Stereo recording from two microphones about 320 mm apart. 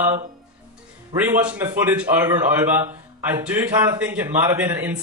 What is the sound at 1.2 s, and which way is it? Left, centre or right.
A man's voice, centre.